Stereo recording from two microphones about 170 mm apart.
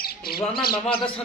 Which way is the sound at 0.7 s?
30° left (ahead or behind).